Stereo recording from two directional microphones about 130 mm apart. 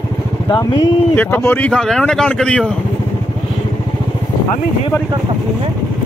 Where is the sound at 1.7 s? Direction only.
5° left (ahead or behind).